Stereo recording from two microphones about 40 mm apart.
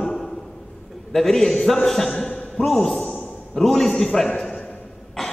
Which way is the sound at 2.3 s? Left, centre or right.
Centre.